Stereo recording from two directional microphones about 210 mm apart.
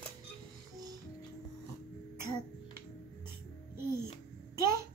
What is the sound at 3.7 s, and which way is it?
Music, 10° right (ahead or behind).